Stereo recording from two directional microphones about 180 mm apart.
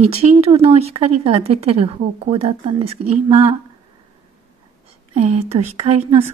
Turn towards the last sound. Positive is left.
turn(degrees=-35)  # may be behind; listen again after turning